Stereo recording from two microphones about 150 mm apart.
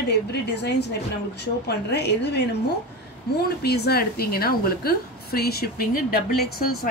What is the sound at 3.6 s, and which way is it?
A woman's voice, 90° left.